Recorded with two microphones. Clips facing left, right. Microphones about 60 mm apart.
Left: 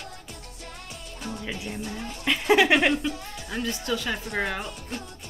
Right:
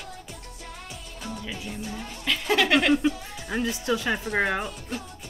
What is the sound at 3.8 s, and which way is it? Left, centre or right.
Speech, centre.